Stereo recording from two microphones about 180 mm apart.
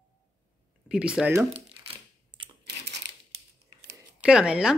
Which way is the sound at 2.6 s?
70° right (ahead or behind).